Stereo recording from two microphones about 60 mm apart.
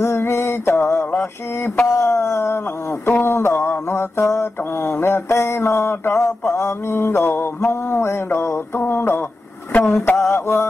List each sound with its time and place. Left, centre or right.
0.0 s mantra: left
1.9 s a sound: left
3.9 s mantra: left
8.7 s a sound: left
9.7 s vehicle: left
10.0 s mantra: left